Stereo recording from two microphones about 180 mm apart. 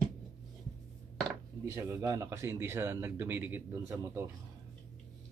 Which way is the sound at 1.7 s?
15° right (ahead or behind).